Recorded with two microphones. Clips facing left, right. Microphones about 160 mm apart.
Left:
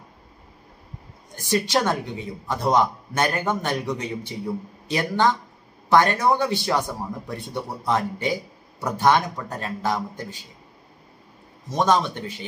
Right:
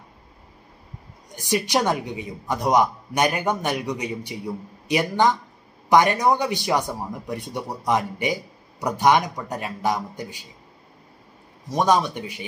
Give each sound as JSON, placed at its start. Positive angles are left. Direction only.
{"t": 1.3, "sound": "a man's voice", "side_deg": -15}
{"t": 11.7, "sound": "a man's voice", "side_deg": -15}